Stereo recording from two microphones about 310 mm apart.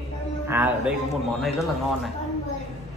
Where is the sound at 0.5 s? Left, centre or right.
Centre.